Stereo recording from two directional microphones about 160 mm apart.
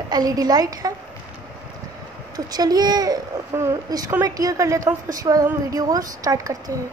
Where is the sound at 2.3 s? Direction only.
25° right (ahead or behind).